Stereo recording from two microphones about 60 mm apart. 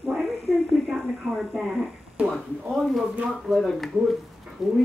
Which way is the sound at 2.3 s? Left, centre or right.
Centre.